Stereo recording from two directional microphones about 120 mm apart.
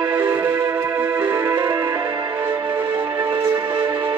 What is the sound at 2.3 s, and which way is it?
Music, 20° right (ahead or behind).